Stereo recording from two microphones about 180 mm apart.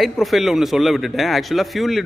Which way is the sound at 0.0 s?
Centre (ahead or behind).